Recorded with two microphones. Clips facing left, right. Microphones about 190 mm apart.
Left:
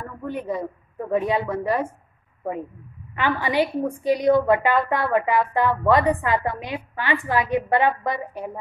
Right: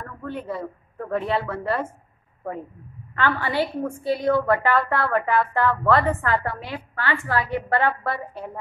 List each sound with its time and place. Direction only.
0.2 s a woman's voice: 15° left (ahead or behind)
3.2 s a woman's voice: 15° left (ahead or behind)